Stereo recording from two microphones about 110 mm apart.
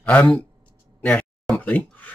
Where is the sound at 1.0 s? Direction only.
15° left (ahead or behind).